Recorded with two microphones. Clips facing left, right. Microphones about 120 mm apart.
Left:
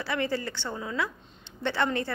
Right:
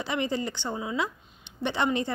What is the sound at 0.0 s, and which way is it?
A woman's voice, 20° right (ahead or behind).